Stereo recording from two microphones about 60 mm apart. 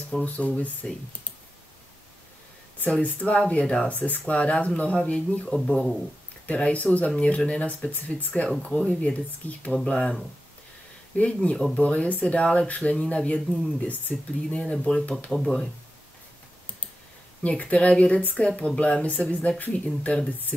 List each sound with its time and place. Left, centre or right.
0.2 s speech: left
2.8 s speech: left
3.9 s speech: left
5.5 s speech: centre
6.4 s speech: centre
11.5 s speech: centre
11.8 s speech: left
14.5 s speech: centre
15.3 s speech: centre
17.4 s speech: left